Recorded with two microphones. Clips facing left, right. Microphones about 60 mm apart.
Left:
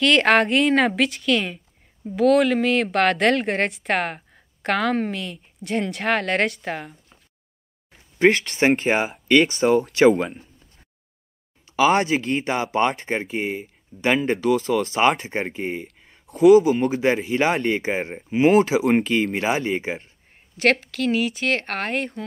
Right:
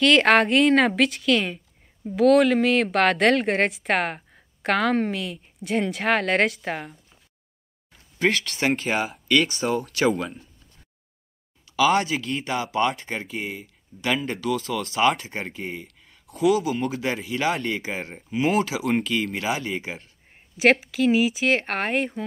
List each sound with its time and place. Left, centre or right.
0.0 s speech: centre
7.9 s speech: left
11.6 s speech: left
14.3 s speech: left
14.7 s speech: left
15.0 s speech: left
15.3 s speech: left
20.5 s speech: centre